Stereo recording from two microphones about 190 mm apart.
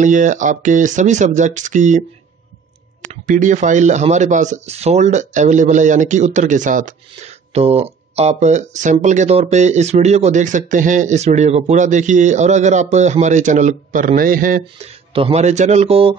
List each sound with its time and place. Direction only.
0.0 s speech: 40° right (ahead or behind)
15.1 s speech: 30° right (ahead or behind)